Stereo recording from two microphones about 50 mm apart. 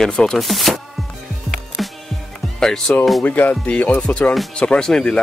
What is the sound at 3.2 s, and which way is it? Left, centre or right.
Speech, left.